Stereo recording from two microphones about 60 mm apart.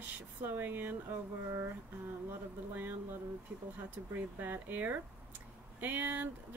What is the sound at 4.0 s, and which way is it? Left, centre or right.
Speech, right.